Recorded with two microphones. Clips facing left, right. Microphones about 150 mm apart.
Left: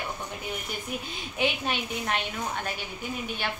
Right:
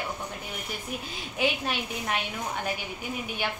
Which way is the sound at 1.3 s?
Centre (ahead or behind).